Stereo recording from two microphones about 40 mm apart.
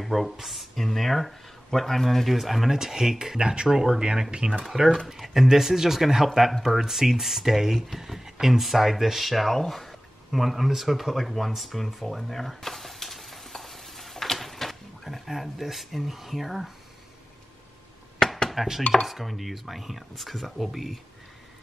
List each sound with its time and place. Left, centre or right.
0.0 s speech: centre; by 3.6 s right
3.6 s speech: centre
4.6 s speech: centre
8.0 s a sound: centre
15.2 s speech: centre
18.5 s chopping: centre
19.0 s speech: centre